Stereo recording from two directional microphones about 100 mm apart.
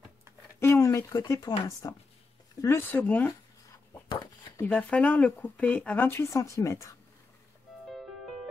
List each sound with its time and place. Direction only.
0.6 s speech: 25° left (ahead or behind)
4.6 s speech: 15° left (ahead or behind); by 7.0 s 30° left (ahead or behind)